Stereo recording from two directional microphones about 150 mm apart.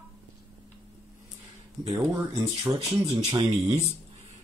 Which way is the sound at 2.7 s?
40° right (ahead or behind).